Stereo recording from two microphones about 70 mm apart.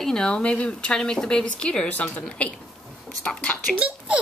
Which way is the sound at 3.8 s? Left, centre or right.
Right.